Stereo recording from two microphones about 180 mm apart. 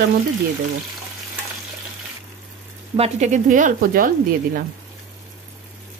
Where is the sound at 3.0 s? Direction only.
40° right (ahead or behind).